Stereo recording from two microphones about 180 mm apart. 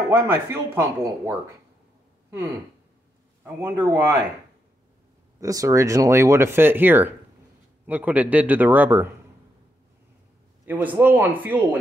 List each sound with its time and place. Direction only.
0.1 s speech: 15° right (ahead or behind)
3.4 s speech: 15° right (ahead or behind)
5.4 s speech: 20° right (ahead or behind)
10.6 s a sound: 10° right (ahead or behind)
11.0 s speech: 10° right (ahead or behind)